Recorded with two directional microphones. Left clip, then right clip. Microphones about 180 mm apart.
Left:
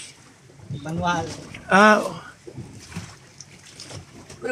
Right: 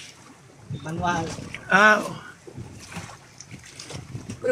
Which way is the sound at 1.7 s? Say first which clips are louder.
Left 2 dB; 25° left (ahead or behind).